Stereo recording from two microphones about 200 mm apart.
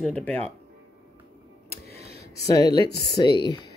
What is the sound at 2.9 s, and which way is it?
Speech, 55° left (ahead or behind).